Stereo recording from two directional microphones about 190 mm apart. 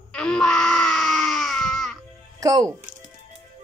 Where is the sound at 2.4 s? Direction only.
20° right (ahead or behind).